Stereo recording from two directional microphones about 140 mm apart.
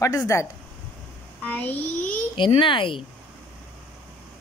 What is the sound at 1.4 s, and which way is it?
Speech, 10° left (ahead or behind).